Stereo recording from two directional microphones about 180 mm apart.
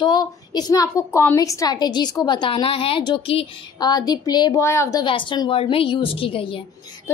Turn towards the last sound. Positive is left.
turn(degrees=30)  # may be behind; listen again after turning